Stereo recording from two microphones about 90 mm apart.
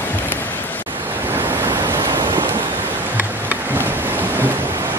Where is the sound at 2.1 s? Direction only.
60° right (ahead or behind).